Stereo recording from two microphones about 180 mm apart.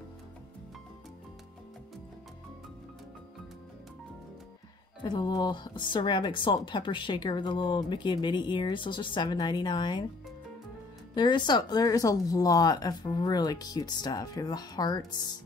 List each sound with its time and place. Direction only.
5.0 s a woman's voice: 20° left (ahead or behind)
11.1 s a woman's voice: 25° left (ahead or behind)